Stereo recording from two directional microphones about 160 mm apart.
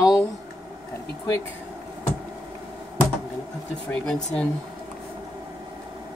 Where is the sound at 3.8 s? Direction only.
5° left (ahead or behind).